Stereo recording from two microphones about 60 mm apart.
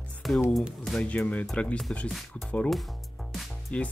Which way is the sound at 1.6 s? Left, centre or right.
Centre.